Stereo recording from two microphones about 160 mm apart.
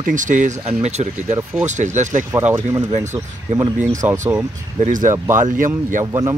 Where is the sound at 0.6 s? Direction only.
45° right (ahead or behind).